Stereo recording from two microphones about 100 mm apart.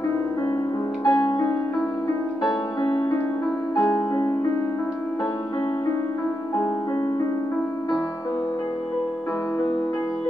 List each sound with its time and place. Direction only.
1.0 s music: 40° left (ahead or behind)
1.4 s music: 25° left (ahead or behind)